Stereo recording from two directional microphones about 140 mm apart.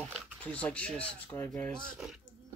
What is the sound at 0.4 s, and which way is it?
Speech, 10° left (ahead or behind).